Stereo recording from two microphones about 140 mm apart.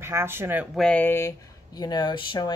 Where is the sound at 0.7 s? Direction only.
5° left (ahead or behind); by 2.5 s 35° left (ahead or behind).